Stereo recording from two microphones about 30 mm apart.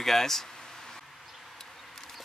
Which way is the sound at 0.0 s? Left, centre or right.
Centre.